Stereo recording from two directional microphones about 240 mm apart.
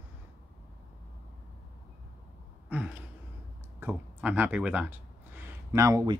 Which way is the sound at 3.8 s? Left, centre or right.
Centre.